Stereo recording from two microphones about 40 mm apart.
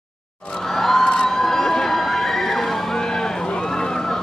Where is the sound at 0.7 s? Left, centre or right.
Centre.